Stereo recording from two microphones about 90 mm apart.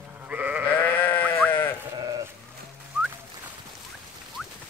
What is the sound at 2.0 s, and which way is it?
Sheep, 40° right (ahead or behind).